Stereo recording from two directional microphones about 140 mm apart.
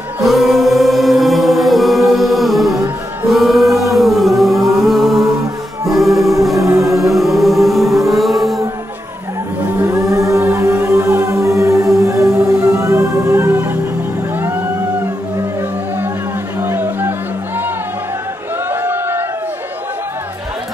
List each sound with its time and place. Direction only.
0.2 s choir: centre (ahead or behind)
3.3 s music: centre (ahead or behind)
6.5 s music: 20° right (ahead or behind)
7.1 s music: centre (ahead or behind)
9.8 s music: 20° right (ahead or behind)
16.5 s music: 20° right (ahead or behind)
18.7 s a sound: 15° right (ahead or behind)